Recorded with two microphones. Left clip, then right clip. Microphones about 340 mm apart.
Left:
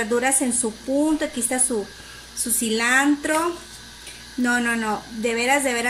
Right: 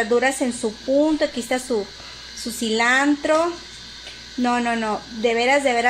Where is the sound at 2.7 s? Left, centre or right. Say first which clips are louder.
Right 1 dB; centre.